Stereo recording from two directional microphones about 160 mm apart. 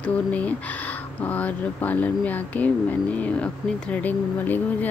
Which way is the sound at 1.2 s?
10° left (ahead or behind).